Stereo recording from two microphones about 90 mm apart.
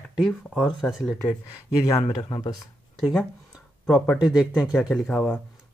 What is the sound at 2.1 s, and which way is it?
Speech, 50° left (ahead or behind).